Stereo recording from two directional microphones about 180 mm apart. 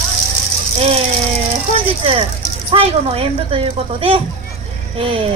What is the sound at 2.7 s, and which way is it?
A woman's voice, 35° right (ahead or behind).